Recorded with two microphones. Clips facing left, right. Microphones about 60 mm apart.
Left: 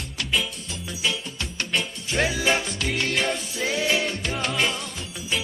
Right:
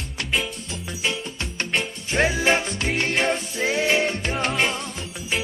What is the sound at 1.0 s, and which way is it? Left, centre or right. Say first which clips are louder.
Music: right 1 dB; right.